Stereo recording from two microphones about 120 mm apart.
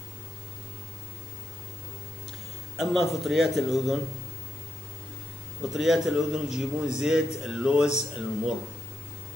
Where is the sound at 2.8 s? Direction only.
Centre (ahead or behind).